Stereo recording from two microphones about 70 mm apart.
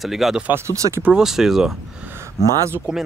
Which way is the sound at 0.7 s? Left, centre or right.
Right.